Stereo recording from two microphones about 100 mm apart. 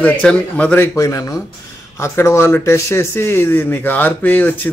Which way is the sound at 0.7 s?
30° left (ahead or behind).